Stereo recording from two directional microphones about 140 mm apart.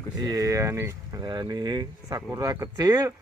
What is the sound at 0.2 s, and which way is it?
Speech, 25° right (ahead or behind).